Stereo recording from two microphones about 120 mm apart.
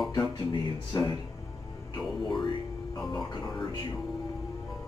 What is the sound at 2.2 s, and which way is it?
Speech, 40° left (ahead or behind).